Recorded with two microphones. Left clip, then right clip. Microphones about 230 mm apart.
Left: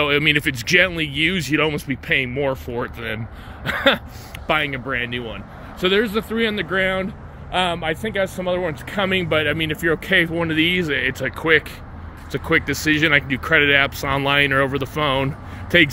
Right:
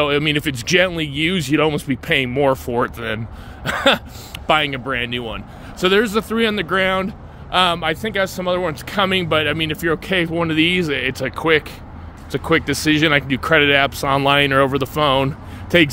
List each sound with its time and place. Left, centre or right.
0.0 s speech: centre; by 2.9 s right
3.6 s speech: centre